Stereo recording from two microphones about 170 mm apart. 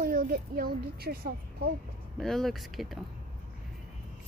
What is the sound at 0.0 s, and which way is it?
Speech, 55° right (ahead or behind).